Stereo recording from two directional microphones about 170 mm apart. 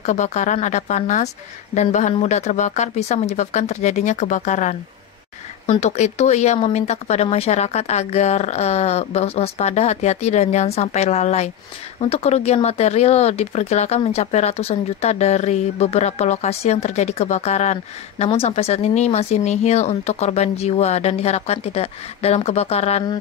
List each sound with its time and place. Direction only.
0.0 s a woman's voice: 45° left (ahead or behind)